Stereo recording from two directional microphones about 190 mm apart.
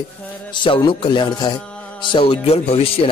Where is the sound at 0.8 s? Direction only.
25° left (ahead or behind).